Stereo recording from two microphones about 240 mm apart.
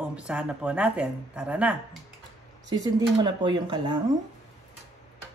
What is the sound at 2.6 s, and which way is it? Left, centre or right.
Speech, centre.